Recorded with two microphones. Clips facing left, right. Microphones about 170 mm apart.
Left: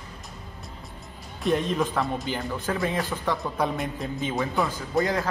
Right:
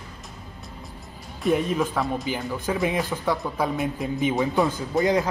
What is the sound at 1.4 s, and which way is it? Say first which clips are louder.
A man's voice: right 2 dB; 5° right (ahead or behind).